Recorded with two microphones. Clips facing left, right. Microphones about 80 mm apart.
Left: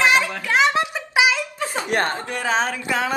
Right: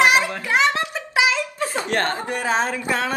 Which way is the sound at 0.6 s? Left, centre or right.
Centre.